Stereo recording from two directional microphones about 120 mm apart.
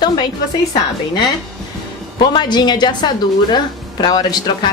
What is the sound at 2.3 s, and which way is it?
A woman's voice, 35° left (ahead or behind).